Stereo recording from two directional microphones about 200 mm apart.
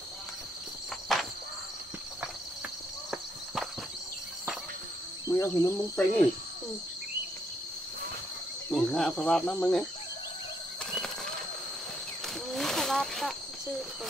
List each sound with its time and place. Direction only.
1.1 s music: centre (ahead or behind)
5.3 s speech: 15° left (ahead or behind)
8.7 s speech: 5° left (ahead or behind)
12.5 s a sound: centre (ahead or behind)